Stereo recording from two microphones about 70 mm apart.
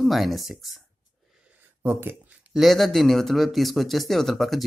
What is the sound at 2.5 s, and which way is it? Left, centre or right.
Speech, centre.